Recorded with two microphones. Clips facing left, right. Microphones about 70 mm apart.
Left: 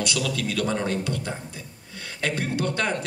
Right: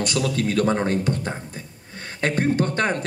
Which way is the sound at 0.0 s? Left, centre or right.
Right.